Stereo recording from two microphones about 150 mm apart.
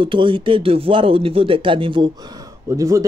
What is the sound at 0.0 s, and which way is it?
Speech, 35° right (ahead or behind).